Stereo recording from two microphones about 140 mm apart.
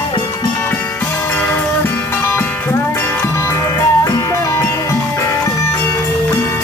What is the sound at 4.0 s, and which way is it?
Music, 25° left (ahead or behind).